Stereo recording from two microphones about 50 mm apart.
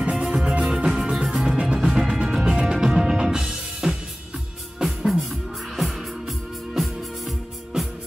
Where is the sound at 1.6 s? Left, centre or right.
Centre.